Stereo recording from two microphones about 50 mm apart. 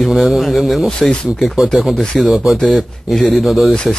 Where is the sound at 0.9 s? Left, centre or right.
Centre.